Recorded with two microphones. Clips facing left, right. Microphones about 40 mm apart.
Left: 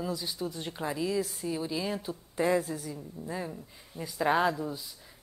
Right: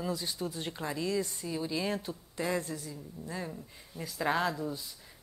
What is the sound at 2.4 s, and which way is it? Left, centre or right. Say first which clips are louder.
A woman's voice: left 6 dB; centre.